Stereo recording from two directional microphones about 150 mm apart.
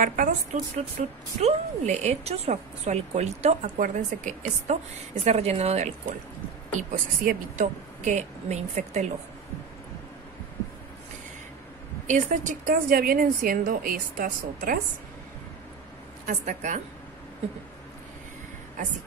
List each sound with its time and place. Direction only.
0.0 s a woman's voice: 65° right (ahead or behind)
0.9 s a woman's voice: 45° right (ahead or behind)
5.2 s a woman's voice: 45° right (ahead or behind)
12.1 s a woman's voice: 55° right (ahead or behind); by 14.8 s 75° right (ahead or behind)
16.3 s a woman's voice: 55° right (ahead or behind)